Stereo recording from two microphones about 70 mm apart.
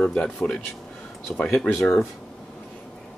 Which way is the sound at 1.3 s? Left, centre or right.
Centre.